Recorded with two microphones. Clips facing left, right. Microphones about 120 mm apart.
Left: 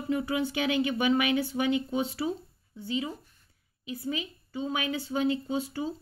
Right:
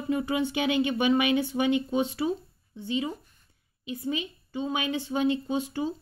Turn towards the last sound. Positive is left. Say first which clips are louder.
# right 2 dB
turn(degrees=-20)  # may be behind; listen again after turning